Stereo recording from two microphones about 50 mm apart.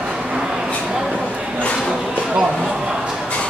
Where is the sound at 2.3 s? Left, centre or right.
Centre.